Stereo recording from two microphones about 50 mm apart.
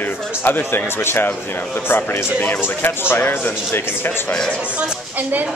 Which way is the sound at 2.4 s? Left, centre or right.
Left.